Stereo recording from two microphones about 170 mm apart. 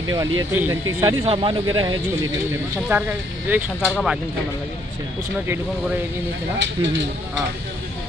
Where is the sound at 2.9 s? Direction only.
10° right (ahead or behind).